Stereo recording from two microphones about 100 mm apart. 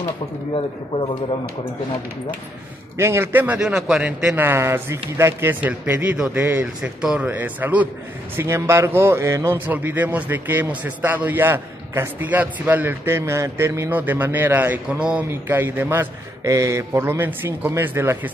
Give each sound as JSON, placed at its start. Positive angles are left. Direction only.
{"t": 3.0, "sound": "a man's voice", "side_deg": -25}
{"t": 3.5, "sound": "speech", "side_deg": -5}
{"t": 4.4, "sound": "a man's voice", "side_deg": -25}
{"t": 6.8, "sound": "speech", "side_deg": -10}
{"t": 8.4, "sound": "a man's voice", "side_deg": -25}
{"t": 14.9, "sound": "speech", "side_deg": -10}
{"t": 15.2, "sound": "a man's voice", "side_deg": -20}